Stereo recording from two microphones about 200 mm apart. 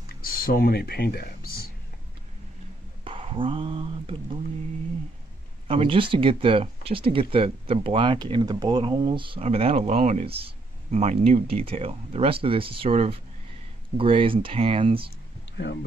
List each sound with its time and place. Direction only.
0.0 s speech: 45° left (ahead or behind)
3.0 s speech: 25° right (ahead or behind)
5.7 s speech: 30° right (ahead or behind)
15.5 s speech: 60° left (ahead or behind)